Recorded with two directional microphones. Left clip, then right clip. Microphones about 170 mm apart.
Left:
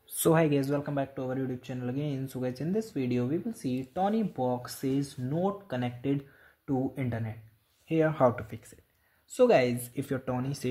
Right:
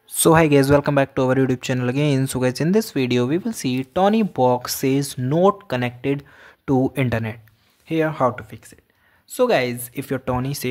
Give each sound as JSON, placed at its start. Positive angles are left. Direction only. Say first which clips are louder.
{"t": 0.2, "sound": "speech", "louder": "right 10 dB", "side_deg": -25}
{"t": 0.6, "sound": "speech", "louder": "right 15 dB", "side_deg": -45}
{"t": 5.7, "sound": "speech", "louder": "right 10 dB", "side_deg": -25}
{"t": 6.6, "sound": "speech", "louder": "right 12 dB", "side_deg": -45}
{"t": 7.9, "sound": "a woman's voice", "louder": "right 5 dB", "side_deg": -15}
{"t": 10.0, "sound": "speech", "louder": "right 10 dB", "side_deg": -20}